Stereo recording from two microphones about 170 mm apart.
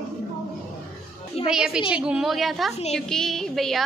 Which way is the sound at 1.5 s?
5° right (ahead or behind).